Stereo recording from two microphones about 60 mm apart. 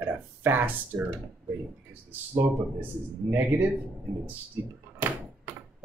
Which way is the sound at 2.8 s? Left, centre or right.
Right.